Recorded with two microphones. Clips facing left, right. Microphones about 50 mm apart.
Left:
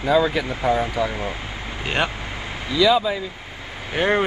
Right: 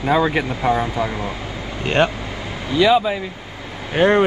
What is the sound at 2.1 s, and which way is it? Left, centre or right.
Vehicle, left.